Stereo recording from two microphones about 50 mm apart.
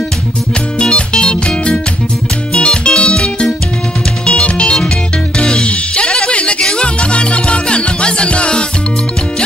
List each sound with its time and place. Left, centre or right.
0.7 s music: centre